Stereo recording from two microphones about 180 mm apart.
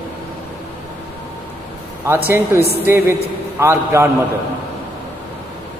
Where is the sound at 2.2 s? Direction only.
15° right (ahead or behind).